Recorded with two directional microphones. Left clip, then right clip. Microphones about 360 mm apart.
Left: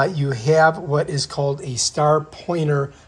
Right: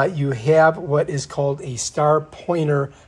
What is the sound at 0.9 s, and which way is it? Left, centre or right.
Speech, centre.